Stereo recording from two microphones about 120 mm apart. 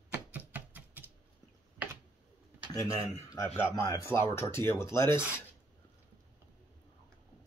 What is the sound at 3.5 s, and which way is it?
Speech, 25° left (ahead or behind).